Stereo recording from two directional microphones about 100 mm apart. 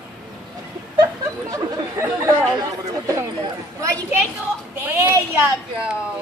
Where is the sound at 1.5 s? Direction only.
35° right (ahead or behind).